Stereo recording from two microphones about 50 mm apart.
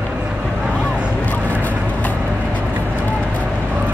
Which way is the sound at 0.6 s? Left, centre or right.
Centre.